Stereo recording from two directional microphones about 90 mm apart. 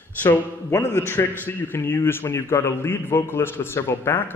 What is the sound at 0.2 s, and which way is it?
A man's voice, 20° left (ahead or behind).